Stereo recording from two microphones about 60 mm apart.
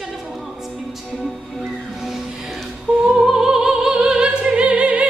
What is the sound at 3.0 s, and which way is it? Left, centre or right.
Opera, centre.